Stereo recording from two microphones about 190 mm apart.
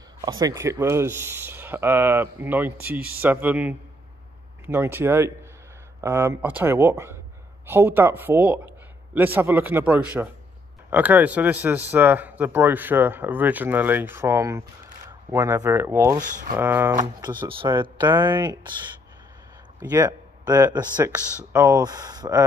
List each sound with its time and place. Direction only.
0.2 s speech: 20° right (ahead or behind)
16.2 s speech: 45° right (ahead or behind)
16.5 s speech: 10° right (ahead or behind)
17.0 s speech: 20° right (ahead or behind)
19.8 s speech: 20° right (ahead or behind)